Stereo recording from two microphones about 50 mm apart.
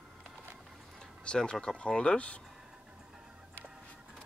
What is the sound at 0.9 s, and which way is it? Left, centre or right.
Speech, centre.